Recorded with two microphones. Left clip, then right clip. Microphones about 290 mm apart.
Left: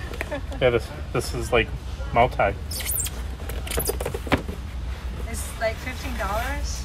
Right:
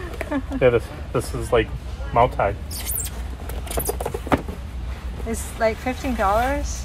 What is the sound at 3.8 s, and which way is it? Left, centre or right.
Speech, centre.